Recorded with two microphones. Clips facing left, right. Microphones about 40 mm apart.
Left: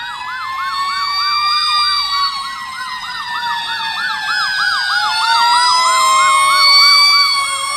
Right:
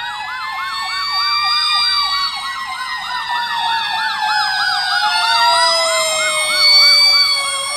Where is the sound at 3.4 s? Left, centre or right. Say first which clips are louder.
Even; centre.